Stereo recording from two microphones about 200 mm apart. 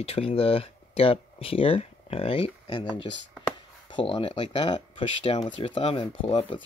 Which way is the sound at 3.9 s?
25° left (ahead or behind).